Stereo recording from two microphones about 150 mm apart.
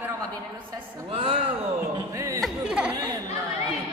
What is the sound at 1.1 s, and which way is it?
Speech, 35° right (ahead or behind).